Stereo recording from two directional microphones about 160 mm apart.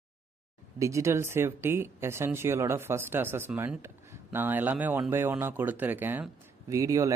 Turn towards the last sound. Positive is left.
turn(degrees=-20)  # may be behind; listen again after turning